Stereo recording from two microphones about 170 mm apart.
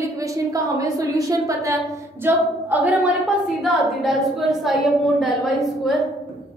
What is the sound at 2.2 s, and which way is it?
A woman's voice, 10° right (ahead or behind).